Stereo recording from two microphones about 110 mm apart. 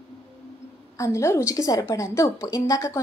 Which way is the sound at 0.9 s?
25° left (ahead or behind).